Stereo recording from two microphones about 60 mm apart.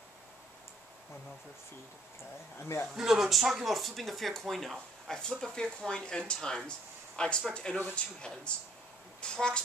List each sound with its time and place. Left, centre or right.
2.6 s speech: left
2.9 s speech: centre